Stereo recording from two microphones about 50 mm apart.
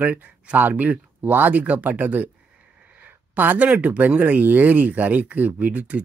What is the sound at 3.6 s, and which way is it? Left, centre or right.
Speech, right.